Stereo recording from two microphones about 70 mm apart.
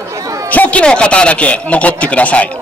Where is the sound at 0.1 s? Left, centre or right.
Right.